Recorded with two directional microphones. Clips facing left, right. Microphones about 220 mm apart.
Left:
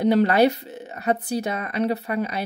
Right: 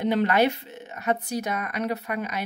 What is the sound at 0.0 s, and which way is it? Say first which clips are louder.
Speech: left 4 dB; 35° left (ahead or behind).